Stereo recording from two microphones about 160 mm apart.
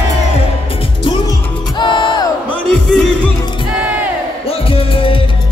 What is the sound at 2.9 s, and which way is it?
Music, 5° left (ahead or behind).